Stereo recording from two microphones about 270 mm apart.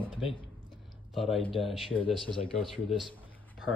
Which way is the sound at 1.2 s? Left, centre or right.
Centre.